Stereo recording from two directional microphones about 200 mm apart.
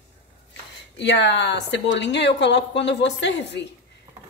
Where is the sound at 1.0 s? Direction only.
60° left (ahead or behind).